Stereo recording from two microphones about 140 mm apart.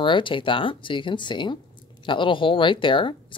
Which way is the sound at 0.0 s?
35° left (ahead or behind).